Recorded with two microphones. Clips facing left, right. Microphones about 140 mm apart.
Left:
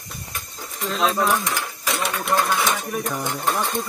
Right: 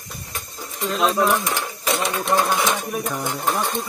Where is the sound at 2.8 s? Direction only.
5° right (ahead or behind).